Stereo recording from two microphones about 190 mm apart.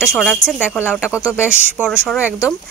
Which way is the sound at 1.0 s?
15° left (ahead or behind).